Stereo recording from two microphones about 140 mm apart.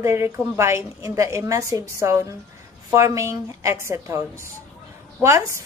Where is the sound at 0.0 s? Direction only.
20° right (ahead or behind).